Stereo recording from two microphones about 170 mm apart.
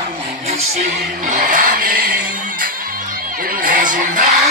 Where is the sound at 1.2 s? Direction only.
50° right (ahead or behind).